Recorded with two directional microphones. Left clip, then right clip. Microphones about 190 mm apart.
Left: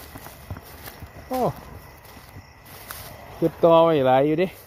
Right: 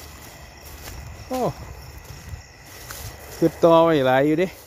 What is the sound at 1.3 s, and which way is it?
Cricket, centre (ahead or behind).